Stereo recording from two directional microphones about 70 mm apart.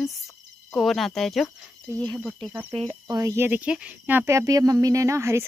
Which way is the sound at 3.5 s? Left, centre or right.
Right.